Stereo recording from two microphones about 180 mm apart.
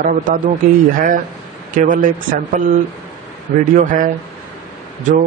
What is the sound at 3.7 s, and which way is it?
Speech, 45° right (ahead or behind).